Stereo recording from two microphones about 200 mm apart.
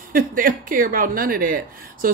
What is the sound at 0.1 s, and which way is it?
Speech, 45° right (ahead or behind).